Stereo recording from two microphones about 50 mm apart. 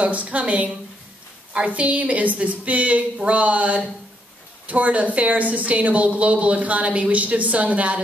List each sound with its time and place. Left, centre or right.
0.0 s speech: right